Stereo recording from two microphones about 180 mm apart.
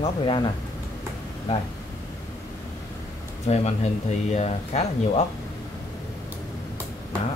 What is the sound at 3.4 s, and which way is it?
Speech, 40° left (ahead or behind).